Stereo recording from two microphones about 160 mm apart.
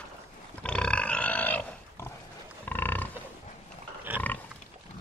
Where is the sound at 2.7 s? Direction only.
10° left (ahead or behind).